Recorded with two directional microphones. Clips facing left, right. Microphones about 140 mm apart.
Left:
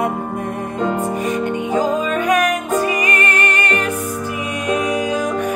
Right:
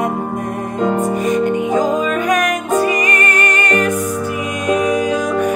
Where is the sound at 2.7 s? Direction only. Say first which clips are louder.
Right 3 dB; 35° right (ahead or behind).